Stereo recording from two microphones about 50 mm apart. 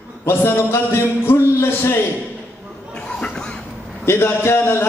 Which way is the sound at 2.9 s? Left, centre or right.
Centre.